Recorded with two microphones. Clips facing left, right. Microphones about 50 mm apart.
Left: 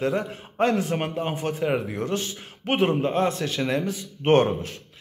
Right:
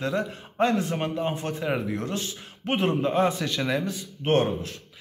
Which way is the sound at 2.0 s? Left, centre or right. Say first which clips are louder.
Left 3 dB; left.